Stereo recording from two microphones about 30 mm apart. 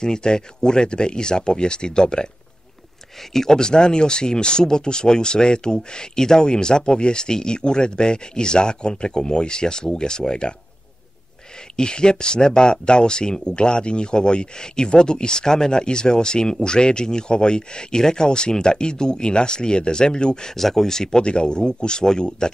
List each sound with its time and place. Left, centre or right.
0.0 s speech: left
3.2 s speech: centre
11.7 s speech: left
20.5 s speech: centre
21.2 s speech: left